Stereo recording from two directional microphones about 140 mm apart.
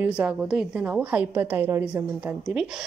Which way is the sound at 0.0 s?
10° right (ahead or behind).